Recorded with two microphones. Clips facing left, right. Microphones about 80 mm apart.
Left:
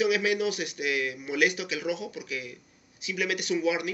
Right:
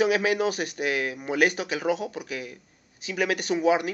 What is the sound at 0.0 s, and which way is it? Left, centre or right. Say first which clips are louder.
Speech: right 3 dB; right.